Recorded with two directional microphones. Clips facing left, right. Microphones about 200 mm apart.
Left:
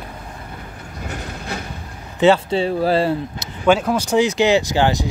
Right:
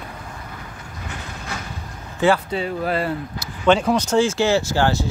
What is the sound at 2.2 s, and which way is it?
Speech, 25° left (ahead or behind).